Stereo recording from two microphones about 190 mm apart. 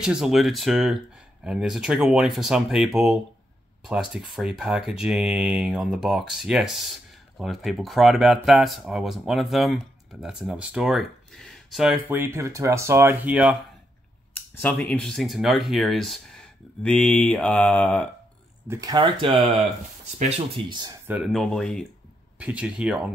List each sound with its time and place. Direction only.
0.0 s speech: centre (ahead or behind)
12.1 s speech: 10° right (ahead or behind)
14.3 s speech: 10° left (ahead or behind)
18.7 s speech: 20° right (ahead or behind)
21.1 s speech: centre (ahead or behind)